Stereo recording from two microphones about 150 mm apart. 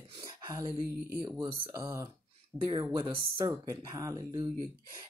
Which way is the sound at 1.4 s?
35° right (ahead or behind).